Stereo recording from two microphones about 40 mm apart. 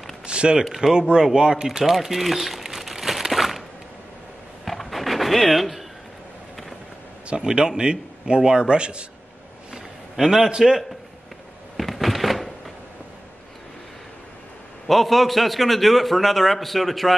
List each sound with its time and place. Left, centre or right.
0.3 s a man's voice: right
1.2 s crumpling: centre
4.6 s a sound: centre
7.3 s a man's voice: centre
10.1 s a man's voice: centre
11.7 s a sound: centre
14.9 s a man's voice: centre